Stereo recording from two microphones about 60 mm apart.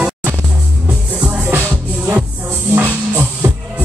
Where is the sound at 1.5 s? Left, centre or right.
Right.